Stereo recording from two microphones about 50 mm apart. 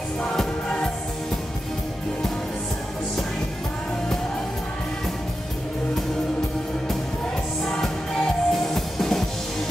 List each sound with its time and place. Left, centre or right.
0.2 s music: centre
7.6 s music: centre